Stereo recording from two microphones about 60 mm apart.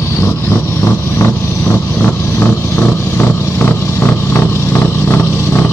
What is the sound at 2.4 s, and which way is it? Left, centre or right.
Vehicle, left.